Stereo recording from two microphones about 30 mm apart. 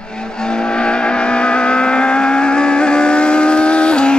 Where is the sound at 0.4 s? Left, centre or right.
Left.